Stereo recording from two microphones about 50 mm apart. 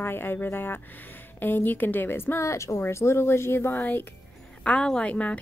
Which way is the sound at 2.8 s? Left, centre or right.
Left.